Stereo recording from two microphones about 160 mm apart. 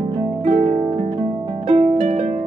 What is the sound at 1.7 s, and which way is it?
Harp, 40° right (ahead or behind).